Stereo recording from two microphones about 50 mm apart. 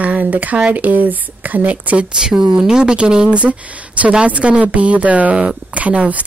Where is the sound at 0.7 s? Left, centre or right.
Right.